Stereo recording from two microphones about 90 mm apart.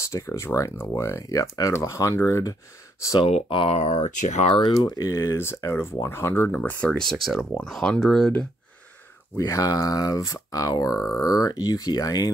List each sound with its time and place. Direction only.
0.0 s speech: 35° left (ahead or behind)
3.2 s speech: 80° left
4.5 s speech: 70° left (ahead or behind)
4.8 s speech: 35° left (ahead or behind)
6.5 s speech: 15° left (ahead or behind)
9.4 s speech: 40° left (ahead or behind)